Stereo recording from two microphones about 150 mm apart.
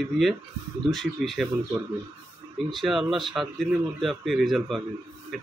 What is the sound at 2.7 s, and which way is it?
Speech, centre (ahead or behind).